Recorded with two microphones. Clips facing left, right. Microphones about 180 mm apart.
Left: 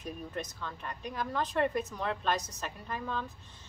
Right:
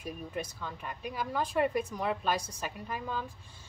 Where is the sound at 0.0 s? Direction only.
10° right (ahead or behind).